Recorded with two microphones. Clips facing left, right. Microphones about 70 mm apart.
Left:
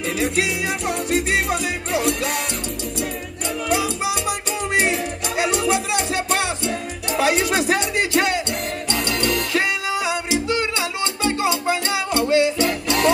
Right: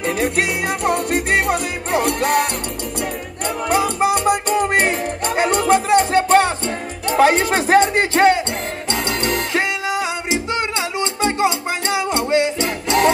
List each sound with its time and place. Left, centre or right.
0.2 s music: right
3.6 s music: right